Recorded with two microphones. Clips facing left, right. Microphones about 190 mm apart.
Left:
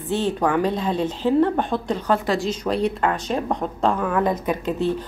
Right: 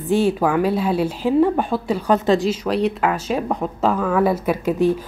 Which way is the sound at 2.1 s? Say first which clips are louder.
Right 5 dB; 20° right (ahead or behind).